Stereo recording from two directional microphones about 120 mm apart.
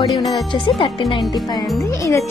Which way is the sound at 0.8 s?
45° left (ahead or behind).